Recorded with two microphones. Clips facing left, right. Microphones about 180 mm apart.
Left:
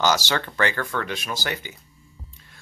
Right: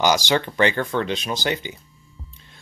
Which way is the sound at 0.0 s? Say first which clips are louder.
Right 3 dB; 15° right (ahead or behind).